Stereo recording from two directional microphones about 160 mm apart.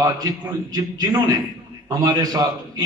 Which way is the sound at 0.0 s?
25° right (ahead or behind).